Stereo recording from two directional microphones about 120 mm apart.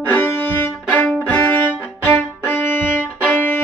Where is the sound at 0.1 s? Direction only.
20° left (ahead or behind).